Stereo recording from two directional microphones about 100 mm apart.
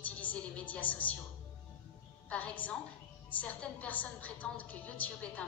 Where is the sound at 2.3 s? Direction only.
15° left (ahead or behind).